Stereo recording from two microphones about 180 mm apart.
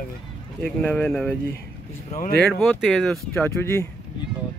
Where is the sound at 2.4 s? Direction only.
5° left (ahead or behind).